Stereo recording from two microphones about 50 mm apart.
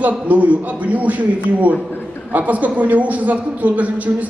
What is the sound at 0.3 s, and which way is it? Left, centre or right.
Speech, right.